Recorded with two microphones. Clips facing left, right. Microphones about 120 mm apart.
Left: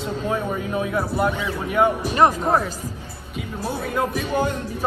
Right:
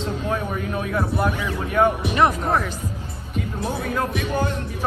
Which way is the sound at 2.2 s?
35° left (ahead or behind).